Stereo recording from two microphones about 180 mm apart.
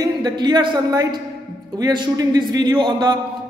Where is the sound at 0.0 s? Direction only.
25° right (ahead or behind).